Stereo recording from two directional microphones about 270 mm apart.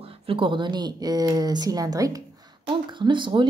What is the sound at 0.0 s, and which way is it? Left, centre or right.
Speech, right.